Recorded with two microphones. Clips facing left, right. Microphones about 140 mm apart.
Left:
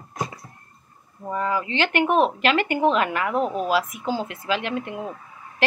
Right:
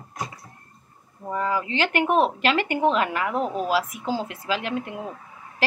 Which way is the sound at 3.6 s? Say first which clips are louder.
Left 1 dB; 30° right (ahead or behind).